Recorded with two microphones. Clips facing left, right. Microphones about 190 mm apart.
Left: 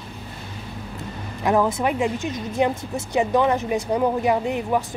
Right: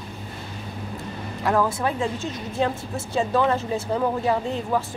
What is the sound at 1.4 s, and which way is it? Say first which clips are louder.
Speech: left 2 dB; 15° left (ahead or behind).